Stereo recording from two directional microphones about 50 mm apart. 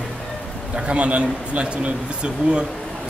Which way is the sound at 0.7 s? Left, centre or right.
Right.